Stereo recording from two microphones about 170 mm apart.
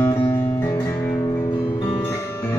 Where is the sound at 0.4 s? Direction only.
10° left (ahead or behind).